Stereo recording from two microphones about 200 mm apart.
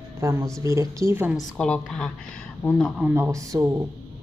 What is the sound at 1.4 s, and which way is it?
A woman's voice, 5° left (ahead or behind).